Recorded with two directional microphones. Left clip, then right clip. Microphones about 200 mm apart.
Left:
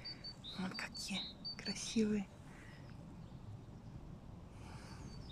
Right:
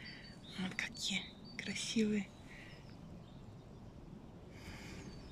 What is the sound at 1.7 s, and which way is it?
Speech, 45° left (ahead or behind).